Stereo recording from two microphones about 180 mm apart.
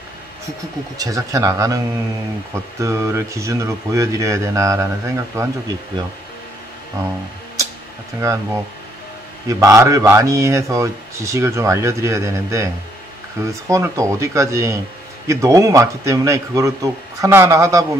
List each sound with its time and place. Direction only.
0.9 s speech: 20° right (ahead or behind)
2.8 s speech: 15° right (ahead or behind)
8.2 s speech: 15° right (ahead or behind)